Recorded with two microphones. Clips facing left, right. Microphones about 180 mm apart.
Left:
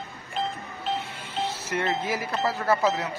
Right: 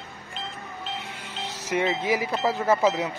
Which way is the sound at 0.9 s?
15° right (ahead or behind).